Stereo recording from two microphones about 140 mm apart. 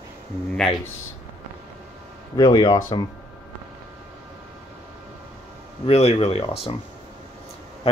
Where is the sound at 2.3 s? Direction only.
30° left (ahead or behind).